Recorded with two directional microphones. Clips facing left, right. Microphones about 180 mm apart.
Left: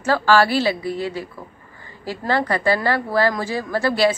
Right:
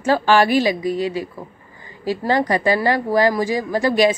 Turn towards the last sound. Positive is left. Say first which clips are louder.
# right 2 dB
turn(degrees=-15)  # may be behind; listen again after turning